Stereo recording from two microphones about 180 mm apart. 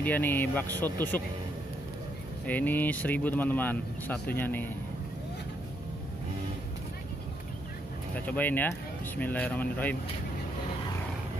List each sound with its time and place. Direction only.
0.0 s speech: 10° left (ahead or behind)
2.4 s speech: 10° left (ahead or behind)
8.3 s speech: 10° left (ahead or behind)